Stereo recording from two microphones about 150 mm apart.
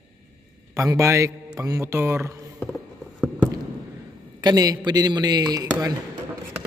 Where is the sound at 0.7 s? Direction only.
20° right (ahead or behind).